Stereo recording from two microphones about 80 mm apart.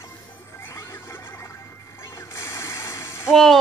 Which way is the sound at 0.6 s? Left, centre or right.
Left.